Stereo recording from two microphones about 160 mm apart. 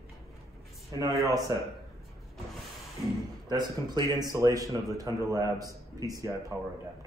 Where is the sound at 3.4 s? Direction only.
25° right (ahead or behind).